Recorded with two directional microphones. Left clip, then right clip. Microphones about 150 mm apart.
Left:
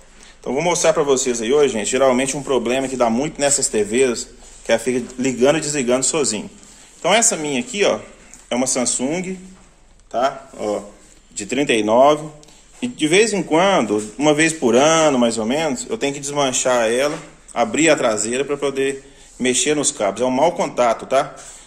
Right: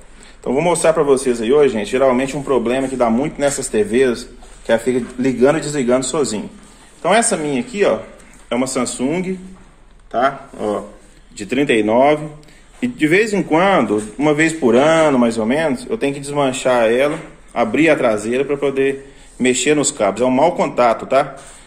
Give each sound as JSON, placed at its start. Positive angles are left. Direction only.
{"t": 0.4, "sound": "speech", "side_deg": 5}
{"t": 1.8, "sound": "a man's voice", "side_deg": 30}
{"t": 10.1, "sound": "speech", "side_deg": 0}
{"t": 11.3, "sound": "a man's voice", "side_deg": 20}